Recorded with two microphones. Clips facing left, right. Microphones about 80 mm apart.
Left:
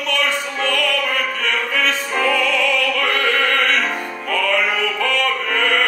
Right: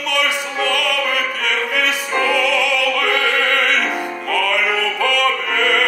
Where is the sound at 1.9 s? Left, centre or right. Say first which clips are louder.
Right 1 dB; centre.